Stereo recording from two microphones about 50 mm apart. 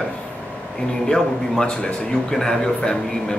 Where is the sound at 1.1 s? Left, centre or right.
Centre.